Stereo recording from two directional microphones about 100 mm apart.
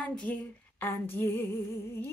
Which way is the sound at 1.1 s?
20° left (ahead or behind).